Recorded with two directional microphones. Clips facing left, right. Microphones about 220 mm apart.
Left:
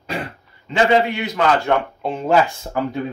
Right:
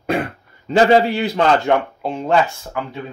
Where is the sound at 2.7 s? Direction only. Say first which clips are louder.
Left 4 dB; 40° left (ahead or behind).